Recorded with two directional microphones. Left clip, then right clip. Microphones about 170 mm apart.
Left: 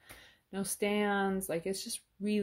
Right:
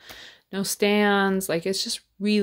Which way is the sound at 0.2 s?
25° right (ahead or behind).